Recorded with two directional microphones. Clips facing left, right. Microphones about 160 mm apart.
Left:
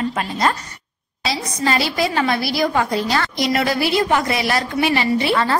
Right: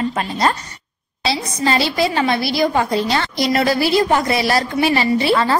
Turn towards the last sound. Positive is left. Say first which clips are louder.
# right 2 dB
turn(degrees=-30)  # may be behind; listen again after turning